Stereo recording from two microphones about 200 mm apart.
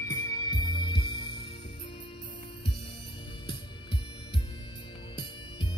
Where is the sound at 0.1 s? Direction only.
20° left (ahead or behind).